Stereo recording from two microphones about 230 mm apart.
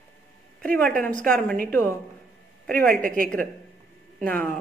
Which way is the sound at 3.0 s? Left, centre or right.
Right.